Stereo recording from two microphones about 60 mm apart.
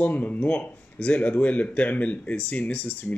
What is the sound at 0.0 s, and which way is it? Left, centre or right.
Speech, left.